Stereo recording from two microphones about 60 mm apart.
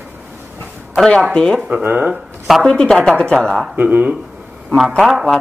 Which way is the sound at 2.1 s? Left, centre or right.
Centre.